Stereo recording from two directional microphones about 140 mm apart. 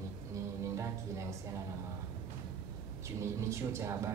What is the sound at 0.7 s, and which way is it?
Speech, 20° right (ahead or behind).